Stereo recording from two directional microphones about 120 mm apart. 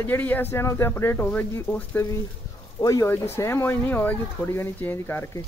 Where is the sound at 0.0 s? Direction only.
15° left (ahead or behind).